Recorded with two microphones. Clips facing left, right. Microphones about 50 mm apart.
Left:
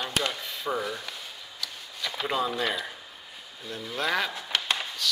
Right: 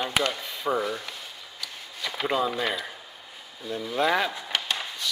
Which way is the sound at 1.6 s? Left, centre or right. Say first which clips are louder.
Even; right.